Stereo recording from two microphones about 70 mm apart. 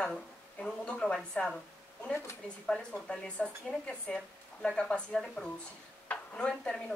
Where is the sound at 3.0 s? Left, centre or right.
Centre.